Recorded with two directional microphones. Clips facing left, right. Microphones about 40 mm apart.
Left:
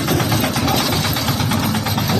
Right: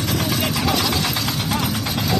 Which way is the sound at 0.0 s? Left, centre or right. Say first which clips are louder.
Left 4 dB; left.